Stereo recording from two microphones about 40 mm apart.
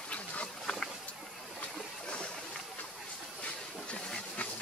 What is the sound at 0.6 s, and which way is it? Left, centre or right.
Vehicle, centre.